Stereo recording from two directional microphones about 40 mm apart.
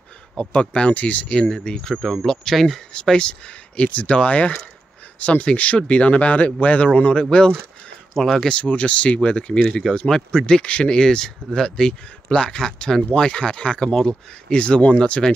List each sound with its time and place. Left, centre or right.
0.4 s speech: left
1.3 s speech: left
2.0 s speech: centre
2.9 s speech: left
10.4 s speech: left